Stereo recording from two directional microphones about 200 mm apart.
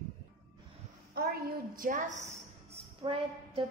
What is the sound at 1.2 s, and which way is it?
A woman's voice, 50° right (ahead or behind).